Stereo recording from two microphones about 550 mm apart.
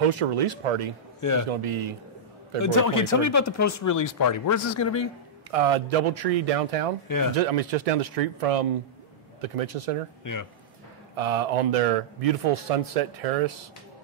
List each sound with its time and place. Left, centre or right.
0.1 s speech: right
1.2 s speech: left
1.6 s a man's voice: right
2.6 s speech: left
5.5 s a man's voice: right
7.1 s speech: left
7.3 s a man's voice: right
11.1 s a man's voice: right